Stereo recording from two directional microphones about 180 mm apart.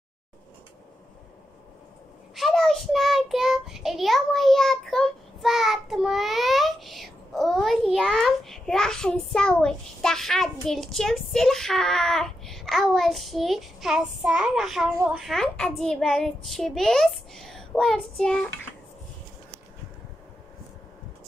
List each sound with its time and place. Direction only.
2.3 s child singing: centre (ahead or behind)
15.1 s a child's voice: centre (ahead or behind)